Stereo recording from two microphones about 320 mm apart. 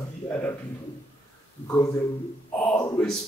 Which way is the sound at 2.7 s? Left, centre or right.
Centre.